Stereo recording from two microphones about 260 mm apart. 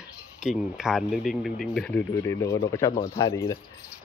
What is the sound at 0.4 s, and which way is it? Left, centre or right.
Speech, centre.